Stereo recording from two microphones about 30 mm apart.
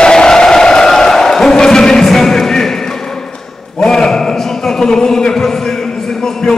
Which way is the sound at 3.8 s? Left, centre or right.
Centre.